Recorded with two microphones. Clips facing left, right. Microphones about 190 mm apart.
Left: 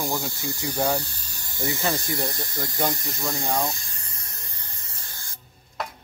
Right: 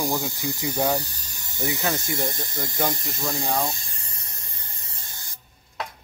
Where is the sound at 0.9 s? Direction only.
15° right (ahead or behind).